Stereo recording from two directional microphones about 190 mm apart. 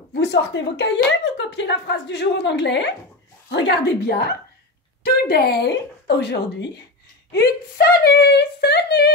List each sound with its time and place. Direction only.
0.1 s speech: 65° left (ahead or behind)